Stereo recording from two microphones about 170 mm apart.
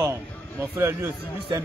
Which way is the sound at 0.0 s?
15° right (ahead or behind).